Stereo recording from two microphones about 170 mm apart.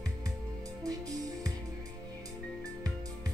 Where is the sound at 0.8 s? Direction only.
20° right (ahead or behind).